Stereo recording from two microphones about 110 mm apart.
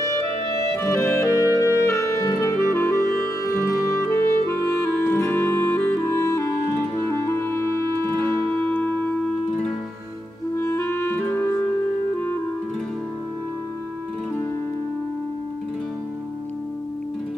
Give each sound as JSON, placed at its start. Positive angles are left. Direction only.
{"t": 0.0, "sound": "clarinet", "side_deg": 30}
{"t": 1.6, "sound": "music", "side_deg": 25}
{"t": 2.4, "sound": "clarinet", "side_deg": 25}
{"t": 8.1, "sound": "music", "side_deg": 20}
{"t": 10.5, "sound": "clarinet", "side_deg": 25}